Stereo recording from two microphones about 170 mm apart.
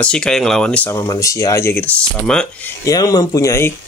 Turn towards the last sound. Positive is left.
turn(degrees=15)  # may be behind; listen again after turning